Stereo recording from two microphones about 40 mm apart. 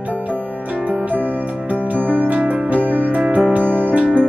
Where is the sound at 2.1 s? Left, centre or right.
Right.